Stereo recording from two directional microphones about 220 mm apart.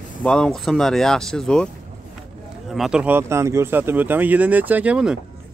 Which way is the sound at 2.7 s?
5° right (ahead or behind).